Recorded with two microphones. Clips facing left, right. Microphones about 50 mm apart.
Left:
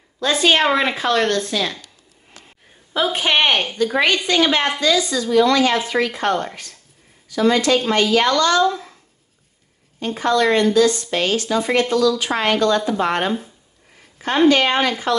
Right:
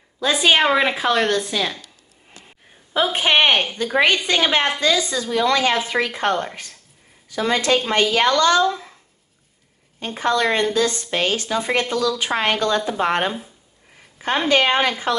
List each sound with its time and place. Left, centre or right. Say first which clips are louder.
0.2 s a woman's voice: even; centre
2.9 s a woman's voice: even; right
8.6 s speech: left 2 dB; centre
9.9 s a woman's voice: left 2 dB; right
14.5 s a woman's voice: left 1 dB; right